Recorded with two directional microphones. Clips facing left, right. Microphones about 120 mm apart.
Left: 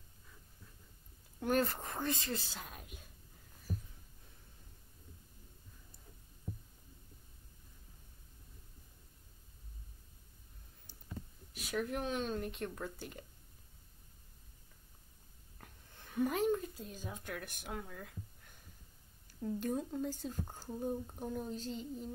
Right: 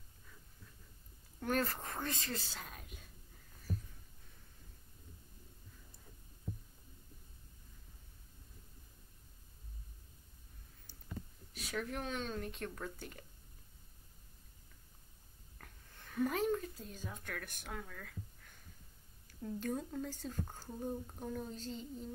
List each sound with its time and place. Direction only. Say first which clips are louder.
1.5 s a woman's voice: left 3 dB; 5° left (ahead or behind)
11.5 s speech: left 3 dB; 5° left (ahead or behind)
16.1 s speech: left 2 dB; 10° left (ahead or behind)
17.7 s speech: left 2 dB; 20° left (ahead or behind)
19.4 s a woman's voice: left 3 dB; 10° left (ahead or behind)